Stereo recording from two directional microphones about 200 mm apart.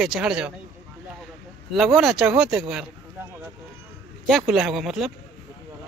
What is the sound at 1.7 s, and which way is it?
Speech, centre (ahead or behind).